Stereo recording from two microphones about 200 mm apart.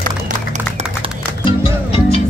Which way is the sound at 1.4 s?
30° left (ahead or behind).